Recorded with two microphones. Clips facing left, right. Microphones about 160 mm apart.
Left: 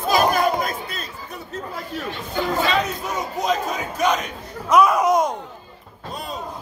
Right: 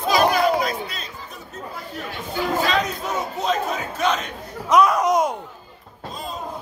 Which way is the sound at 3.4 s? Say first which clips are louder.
Left 2 dB; 15° left (ahead or behind).